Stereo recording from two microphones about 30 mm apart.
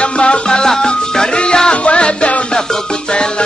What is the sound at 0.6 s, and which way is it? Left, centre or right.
Music, left.